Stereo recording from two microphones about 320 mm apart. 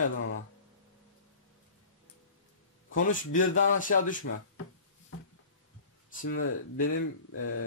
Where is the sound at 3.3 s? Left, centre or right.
Left.